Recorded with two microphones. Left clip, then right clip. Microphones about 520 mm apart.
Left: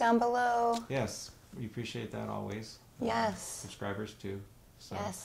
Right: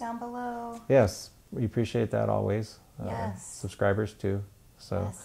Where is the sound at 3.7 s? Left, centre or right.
Right.